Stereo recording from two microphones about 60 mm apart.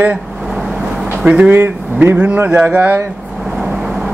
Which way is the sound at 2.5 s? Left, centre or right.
Right.